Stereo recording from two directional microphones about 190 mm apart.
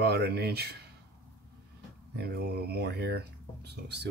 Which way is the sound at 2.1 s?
60° right (ahead or behind).